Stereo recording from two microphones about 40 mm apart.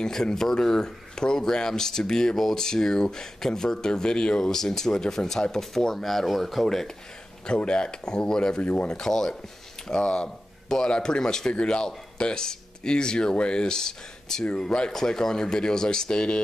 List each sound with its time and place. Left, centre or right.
0.0 s speech: centre
7.4 s speech: left